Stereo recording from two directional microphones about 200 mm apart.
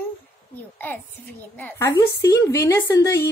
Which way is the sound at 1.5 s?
10° left (ahead or behind).